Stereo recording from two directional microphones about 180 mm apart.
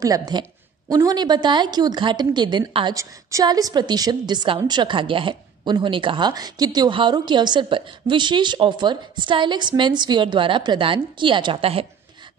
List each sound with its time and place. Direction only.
0.0 s a woman's voice: 20° right (ahead or behind)